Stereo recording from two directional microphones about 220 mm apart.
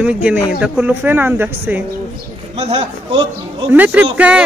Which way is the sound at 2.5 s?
25° right (ahead or behind).